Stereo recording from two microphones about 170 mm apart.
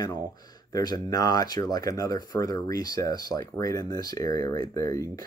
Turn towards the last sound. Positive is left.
turn(degrees=20)  # may be behind; listen again after turning